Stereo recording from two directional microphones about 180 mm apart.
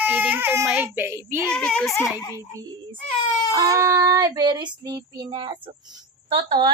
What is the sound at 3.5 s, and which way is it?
Child singing, 20° right (ahead or behind).